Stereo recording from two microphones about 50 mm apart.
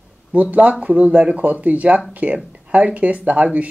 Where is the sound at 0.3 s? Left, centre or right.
Right.